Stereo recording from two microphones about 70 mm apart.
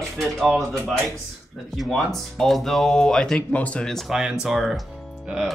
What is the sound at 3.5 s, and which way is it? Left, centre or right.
Speech, centre.